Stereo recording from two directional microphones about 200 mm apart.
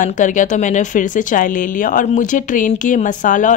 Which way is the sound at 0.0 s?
40° left (ahead or behind).